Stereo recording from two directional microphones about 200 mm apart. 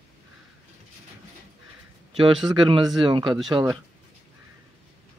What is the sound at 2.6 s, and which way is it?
Speech, 25° right (ahead or behind).